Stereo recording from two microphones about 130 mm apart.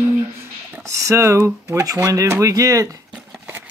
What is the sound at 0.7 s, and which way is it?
Speech, 25° right (ahead or behind).